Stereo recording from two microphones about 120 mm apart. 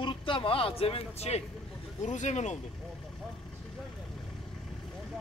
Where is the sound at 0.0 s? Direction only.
45° left (ahead or behind); by 1.4 s 65° left (ahead or behind).